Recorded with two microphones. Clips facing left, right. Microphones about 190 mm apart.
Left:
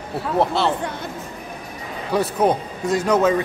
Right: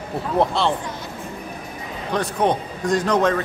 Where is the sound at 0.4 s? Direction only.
Centre (ahead or behind).